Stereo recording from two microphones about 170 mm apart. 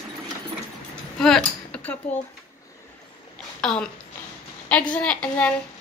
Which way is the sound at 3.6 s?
5° left (ahead or behind).